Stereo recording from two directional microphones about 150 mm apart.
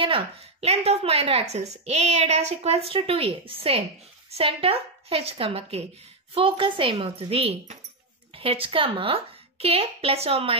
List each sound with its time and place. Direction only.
0.0 s a woman's voice: 40° right (ahead or behind)